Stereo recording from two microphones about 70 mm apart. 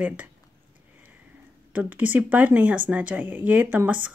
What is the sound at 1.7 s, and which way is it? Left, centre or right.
Speech, right.